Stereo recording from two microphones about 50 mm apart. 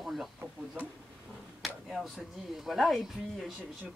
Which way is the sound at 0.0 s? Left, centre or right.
Centre.